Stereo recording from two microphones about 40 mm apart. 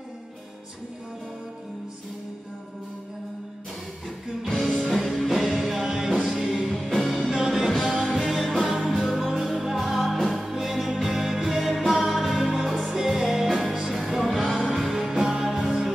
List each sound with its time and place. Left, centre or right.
4.5 s music: centre
5.6 s music: centre
7.2 s music: centre